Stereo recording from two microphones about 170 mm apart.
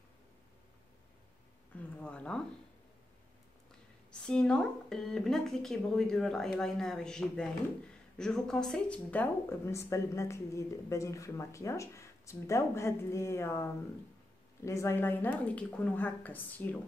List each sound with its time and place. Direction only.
2.0 s speech: 5° left (ahead or behind)
4.1 s a woman's voice: 5° left (ahead or behind)